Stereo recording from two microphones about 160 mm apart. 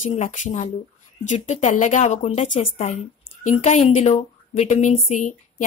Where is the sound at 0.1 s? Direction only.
45° left (ahead or behind).